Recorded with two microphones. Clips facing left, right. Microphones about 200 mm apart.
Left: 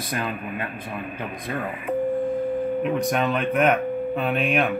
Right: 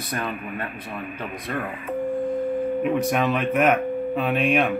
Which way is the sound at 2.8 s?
5° right (ahead or behind).